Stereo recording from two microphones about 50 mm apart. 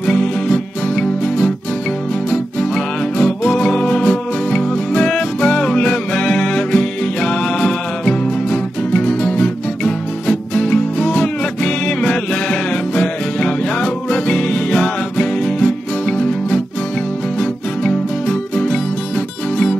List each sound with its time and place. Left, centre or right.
0.0 s music: centre